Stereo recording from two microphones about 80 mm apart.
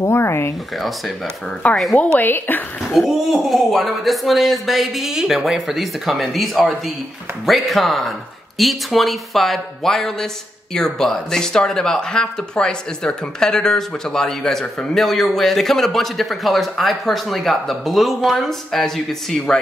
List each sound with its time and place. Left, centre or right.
0.0 s speech: left
0.7 s speech: centre
1.6 s speech: centre
2.1 s speech: left
2.9 s speech: centre